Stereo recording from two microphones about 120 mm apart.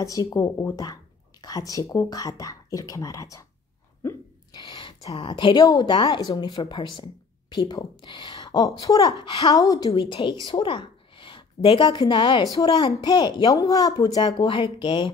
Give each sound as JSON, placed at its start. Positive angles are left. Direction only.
{"t": 0.0, "sound": "speech", "side_deg": 30}
{"t": 4.0, "sound": "hiccup", "side_deg": 20}
{"t": 4.5, "sound": "a sound", "side_deg": 40}
{"t": 5.7, "sound": "a woman's voice", "side_deg": 35}
{"t": 9.8, "sound": "a woman's voice", "side_deg": 45}